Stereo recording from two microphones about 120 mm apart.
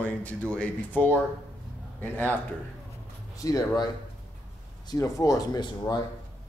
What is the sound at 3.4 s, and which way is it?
Speech, 30° left (ahead or behind).